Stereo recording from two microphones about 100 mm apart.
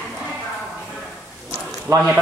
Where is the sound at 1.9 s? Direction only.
35° right (ahead or behind).